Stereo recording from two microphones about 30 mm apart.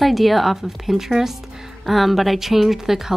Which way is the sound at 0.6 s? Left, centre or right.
Centre.